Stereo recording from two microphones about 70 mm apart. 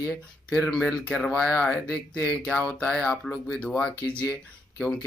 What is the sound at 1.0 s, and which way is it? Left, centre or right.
Speech, centre.